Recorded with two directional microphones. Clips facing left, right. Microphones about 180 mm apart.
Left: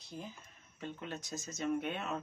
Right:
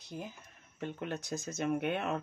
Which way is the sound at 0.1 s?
60° right (ahead or behind).